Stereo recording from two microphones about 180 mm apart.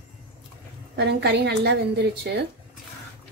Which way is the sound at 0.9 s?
65° right (ahead or behind).